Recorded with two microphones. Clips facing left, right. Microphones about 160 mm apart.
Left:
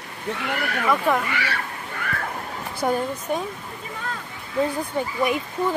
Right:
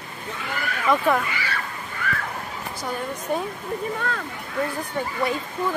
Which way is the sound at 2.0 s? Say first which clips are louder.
Right 2 dB; 55° left (ahead or behind).